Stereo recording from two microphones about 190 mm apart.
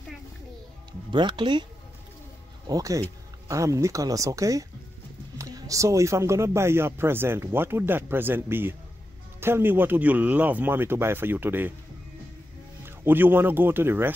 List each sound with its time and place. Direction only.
1.1 s speech: 25° right (ahead or behind)
12.8 s speech: 10° right (ahead or behind)